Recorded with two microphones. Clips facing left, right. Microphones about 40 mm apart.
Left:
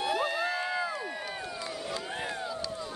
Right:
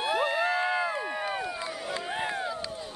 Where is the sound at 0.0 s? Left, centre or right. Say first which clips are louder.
Right 3 dB; right.